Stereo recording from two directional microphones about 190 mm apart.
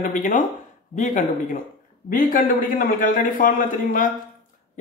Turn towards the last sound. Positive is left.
turn(degrees=45)  # may be behind; listen again after turning